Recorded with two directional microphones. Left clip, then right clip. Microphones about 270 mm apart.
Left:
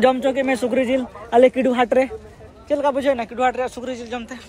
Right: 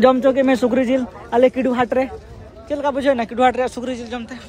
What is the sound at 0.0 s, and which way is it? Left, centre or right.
A man's voice, centre.